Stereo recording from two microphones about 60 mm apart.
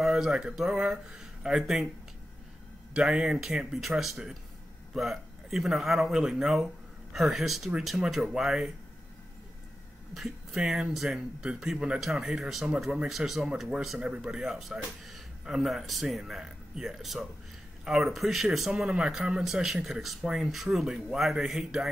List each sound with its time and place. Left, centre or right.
0.0 s speech: centre
2.9 s speech: centre
10.1 s speech: centre